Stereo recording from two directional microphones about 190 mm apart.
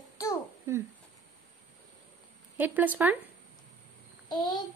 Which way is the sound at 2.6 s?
10° right (ahead or behind).